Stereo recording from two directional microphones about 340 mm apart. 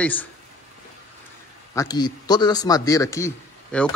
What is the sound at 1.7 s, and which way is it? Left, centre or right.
A man's voice, centre.